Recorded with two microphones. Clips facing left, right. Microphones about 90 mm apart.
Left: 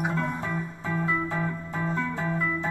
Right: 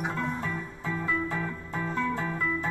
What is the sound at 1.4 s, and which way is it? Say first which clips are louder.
Music: left 3 dB; 25° left (ahead or behind).